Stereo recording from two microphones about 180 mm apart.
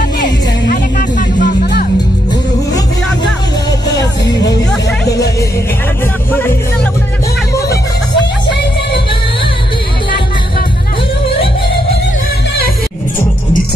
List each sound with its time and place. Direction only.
0.2 s music: 45° left (ahead or behind)